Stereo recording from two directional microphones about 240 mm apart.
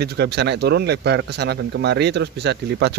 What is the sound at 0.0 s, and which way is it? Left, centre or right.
A man's voice, right.